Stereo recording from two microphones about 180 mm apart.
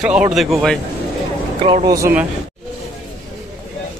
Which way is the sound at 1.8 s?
15° right (ahead or behind).